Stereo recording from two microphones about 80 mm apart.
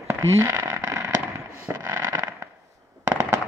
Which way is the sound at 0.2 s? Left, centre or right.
Right.